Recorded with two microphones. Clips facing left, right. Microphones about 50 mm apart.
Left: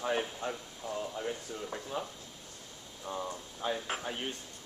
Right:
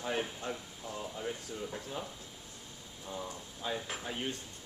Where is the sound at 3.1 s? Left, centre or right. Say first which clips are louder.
Left 4 dB; left.